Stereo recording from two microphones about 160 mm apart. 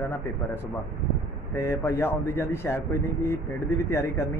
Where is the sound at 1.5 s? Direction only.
15° left (ahead or behind).